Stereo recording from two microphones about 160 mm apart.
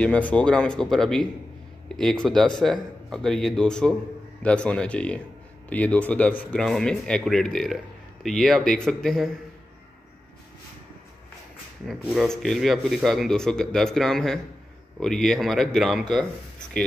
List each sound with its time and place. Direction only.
0.0 s speech: 10° left (ahead or behind)
11.9 s speech: 5° right (ahead or behind)